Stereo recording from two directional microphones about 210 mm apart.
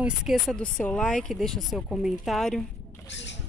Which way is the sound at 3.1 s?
55° left (ahead or behind).